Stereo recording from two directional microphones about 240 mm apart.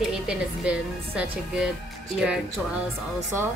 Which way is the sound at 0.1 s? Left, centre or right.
Centre.